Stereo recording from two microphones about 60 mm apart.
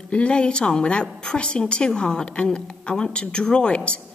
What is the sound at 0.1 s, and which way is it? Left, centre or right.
Speech, centre.